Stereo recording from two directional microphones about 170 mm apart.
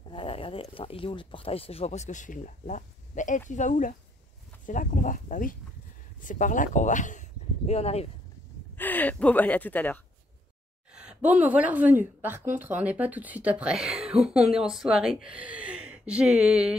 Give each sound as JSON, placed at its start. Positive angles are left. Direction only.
{"t": 0.1, "sound": "speech", "side_deg": 30}
{"t": 8.7, "sound": "speech", "side_deg": 10}
{"t": 10.9, "sound": "a woman's voice", "side_deg": -5}